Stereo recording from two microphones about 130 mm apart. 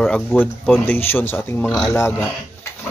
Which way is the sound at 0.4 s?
10° left (ahead or behind).